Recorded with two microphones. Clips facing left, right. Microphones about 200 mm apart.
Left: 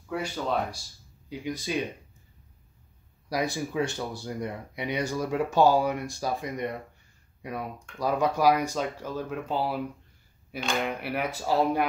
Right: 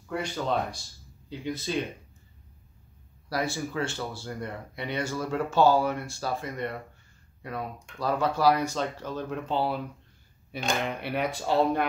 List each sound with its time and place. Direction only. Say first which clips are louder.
0.1 s speech: even; 5° left (ahead or behind)
3.3 s speech: left 1 dB; 15° left (ahead or behind)
11.0 s speech: right 1 dB; 5° left (ahead or behind)